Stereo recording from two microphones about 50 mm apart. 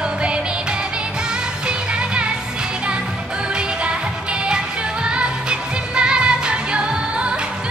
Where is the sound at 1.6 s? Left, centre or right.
Right.